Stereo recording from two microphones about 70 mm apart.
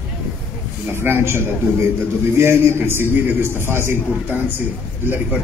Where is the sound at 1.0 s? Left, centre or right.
Right.